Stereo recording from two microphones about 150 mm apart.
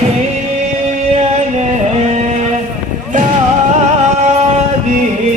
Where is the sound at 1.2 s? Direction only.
45° right (ahead or behind).